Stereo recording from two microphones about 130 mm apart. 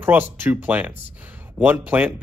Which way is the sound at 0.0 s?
15° right (ahead or behind).